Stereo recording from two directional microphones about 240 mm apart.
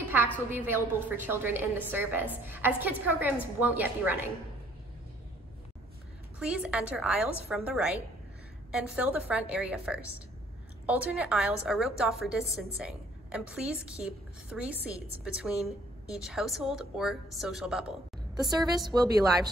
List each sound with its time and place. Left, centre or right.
0.0 s a sound: centre
0.5 s a woman's voice: centre
6.4 s a woman's voice: centre
18.3 s a woman's voice: centre